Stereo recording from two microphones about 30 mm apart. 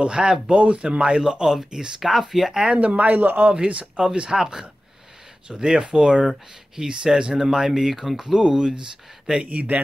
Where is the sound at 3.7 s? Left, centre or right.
Right.